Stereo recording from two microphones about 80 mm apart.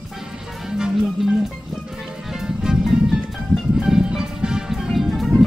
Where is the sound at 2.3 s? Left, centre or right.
Centre.